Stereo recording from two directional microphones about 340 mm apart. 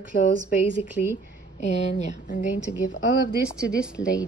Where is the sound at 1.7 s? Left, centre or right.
Left.